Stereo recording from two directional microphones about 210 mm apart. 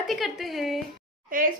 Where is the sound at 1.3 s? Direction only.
40° right (ahead or behind).